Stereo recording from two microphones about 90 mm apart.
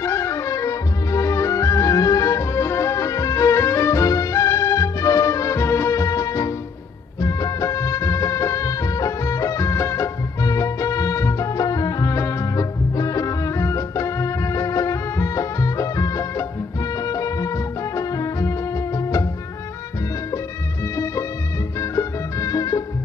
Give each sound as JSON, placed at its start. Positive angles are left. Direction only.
{"t": 0.0, "sound": "music", "side_deg": 30}
{"t": 7.2, "sound": "music of bollywood", "side_deg": 40}
{"t": 17.0, "sound": "music", "side_deg": 40}
{"t": 20.9, "sound": "music", "side_deg": 35}